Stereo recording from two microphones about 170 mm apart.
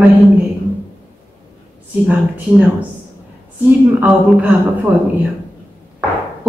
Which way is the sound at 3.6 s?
10° right (ahead or behind).